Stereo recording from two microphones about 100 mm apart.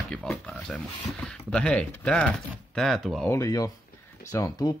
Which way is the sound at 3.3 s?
35° left (ahead or behind).